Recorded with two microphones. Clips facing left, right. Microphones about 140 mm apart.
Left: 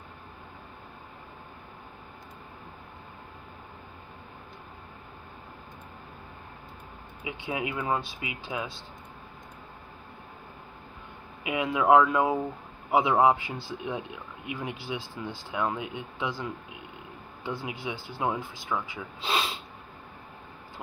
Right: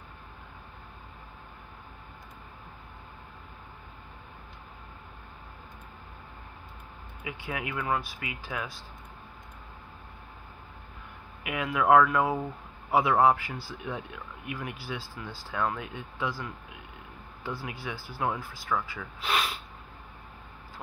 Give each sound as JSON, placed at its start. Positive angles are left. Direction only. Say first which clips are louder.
{"t": 7.2, "sound": "speech", "louder": "left 3 dB", "side_deg": 20}
{"t": 11.4, "sound": "speech", "louder": "left 2 dB", "side_deg": 20}